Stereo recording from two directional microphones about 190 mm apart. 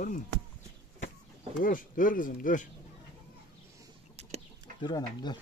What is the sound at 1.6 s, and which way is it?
Speech, 45° left (ahead or behind).